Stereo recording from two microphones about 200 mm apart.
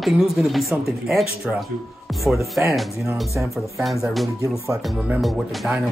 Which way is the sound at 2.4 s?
15° right (ahead or behind).